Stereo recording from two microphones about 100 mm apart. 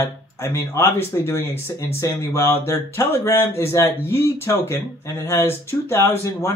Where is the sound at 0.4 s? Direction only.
25° left (ahead or behind).